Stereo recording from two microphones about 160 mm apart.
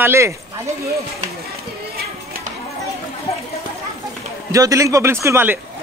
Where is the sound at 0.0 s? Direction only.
15° right (ahead or behind).